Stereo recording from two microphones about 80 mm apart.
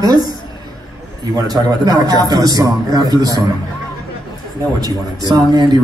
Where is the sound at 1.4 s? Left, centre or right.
Right.